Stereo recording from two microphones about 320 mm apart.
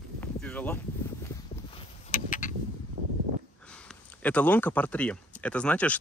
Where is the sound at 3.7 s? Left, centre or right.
Centre.